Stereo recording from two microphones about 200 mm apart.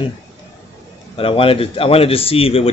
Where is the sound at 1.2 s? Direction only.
25° left (ahead or behind).